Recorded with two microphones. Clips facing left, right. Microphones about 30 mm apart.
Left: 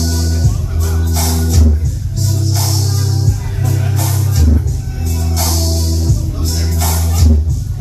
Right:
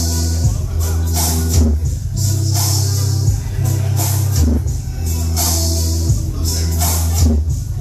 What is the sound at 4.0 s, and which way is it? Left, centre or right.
Music, centre.